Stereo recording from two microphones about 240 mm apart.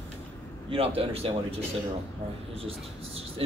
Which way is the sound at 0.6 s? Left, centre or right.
Right.